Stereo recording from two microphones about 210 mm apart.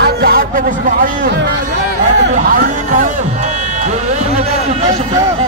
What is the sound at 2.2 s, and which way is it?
Speech, 45° right (ahead or behind).